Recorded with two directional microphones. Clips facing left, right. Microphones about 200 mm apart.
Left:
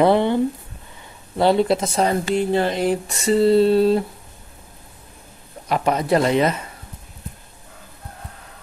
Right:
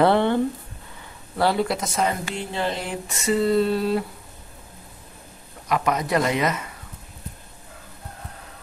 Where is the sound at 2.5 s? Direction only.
45° left (ahead or behind); by 4.0 s 30° left (ahead or behind).